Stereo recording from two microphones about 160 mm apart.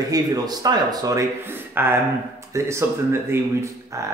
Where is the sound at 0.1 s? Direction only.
25° right (ahead or behind).